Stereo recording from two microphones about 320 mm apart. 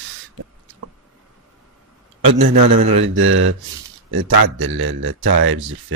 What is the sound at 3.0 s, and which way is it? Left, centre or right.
Speech, right.